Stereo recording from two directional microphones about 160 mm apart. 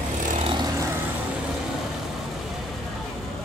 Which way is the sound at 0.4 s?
30° right (ahead or behind).